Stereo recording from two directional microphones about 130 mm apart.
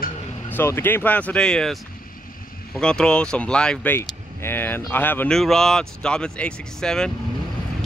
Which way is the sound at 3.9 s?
15° left (ahead or behind).